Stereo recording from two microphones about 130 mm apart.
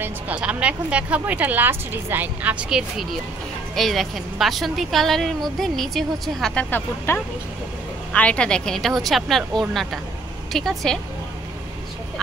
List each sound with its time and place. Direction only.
0.0 s a woman's voice: 10° right (ahead or behind)